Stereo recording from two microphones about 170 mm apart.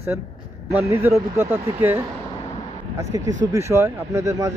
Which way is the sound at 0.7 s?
15° right (ahead or behind).